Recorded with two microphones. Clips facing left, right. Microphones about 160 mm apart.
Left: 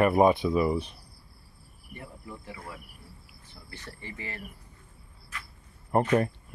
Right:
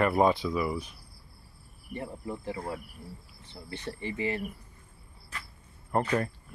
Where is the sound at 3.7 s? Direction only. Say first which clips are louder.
Right 8 dB; 20° right (ahead or behind).